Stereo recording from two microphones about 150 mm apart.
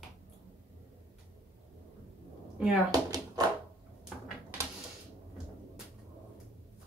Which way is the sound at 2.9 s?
25° right (ahead or behind).